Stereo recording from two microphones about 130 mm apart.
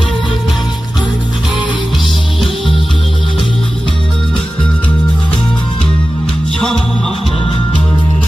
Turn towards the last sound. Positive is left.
turn(degrees=5)  # may be behind; listen again after turning